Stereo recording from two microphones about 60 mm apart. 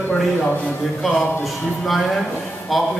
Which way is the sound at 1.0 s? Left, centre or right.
Centre.